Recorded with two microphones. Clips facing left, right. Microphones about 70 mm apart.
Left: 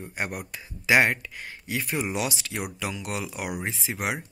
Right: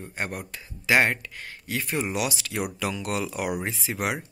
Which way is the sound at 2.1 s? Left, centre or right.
Left.